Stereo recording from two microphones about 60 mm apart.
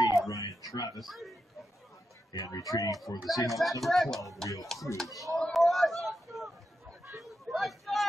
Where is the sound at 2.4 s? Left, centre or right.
Left.